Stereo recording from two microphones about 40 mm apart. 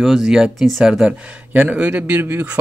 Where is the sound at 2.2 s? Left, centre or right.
Right.